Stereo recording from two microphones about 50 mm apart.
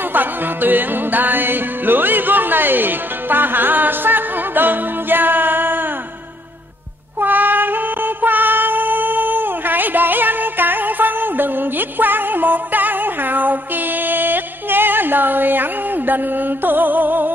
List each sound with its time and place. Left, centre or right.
0.1 s music: right
7.2 s music: right